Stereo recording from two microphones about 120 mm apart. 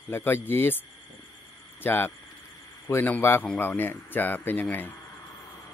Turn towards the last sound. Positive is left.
turn(degrees=15)  # may be behind; listen again after turning